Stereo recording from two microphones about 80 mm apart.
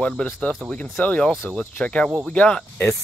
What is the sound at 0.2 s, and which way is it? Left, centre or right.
Speech, centre.